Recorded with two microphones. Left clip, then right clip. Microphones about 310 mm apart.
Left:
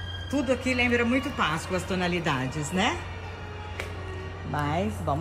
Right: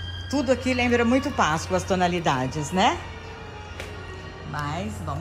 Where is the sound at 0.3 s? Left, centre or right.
Centre.